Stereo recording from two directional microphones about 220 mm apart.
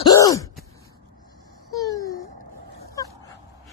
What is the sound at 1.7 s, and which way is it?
Babbling, 15° left (ahead or behind).